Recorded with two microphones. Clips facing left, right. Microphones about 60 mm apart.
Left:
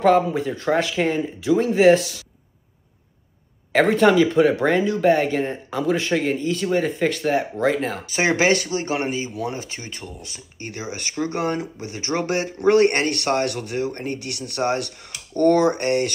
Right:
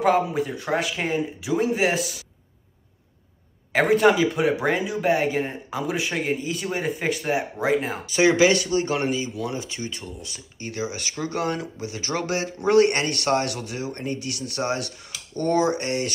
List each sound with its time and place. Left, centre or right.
0.0 s speech: centre
3.7 s speech: centre
8.1 s speech: left
8.6 s speech: left